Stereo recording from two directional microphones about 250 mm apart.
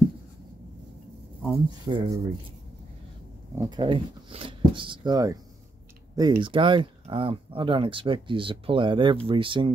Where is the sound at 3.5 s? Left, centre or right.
Centre.